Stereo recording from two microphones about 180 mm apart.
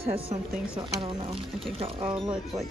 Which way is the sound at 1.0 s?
30° right (ahead or behind).